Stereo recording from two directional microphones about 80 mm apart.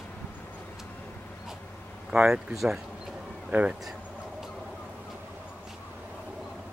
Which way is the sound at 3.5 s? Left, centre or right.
Centre.